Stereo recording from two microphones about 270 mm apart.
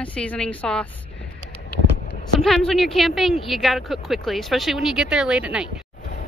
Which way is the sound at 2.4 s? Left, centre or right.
Centre.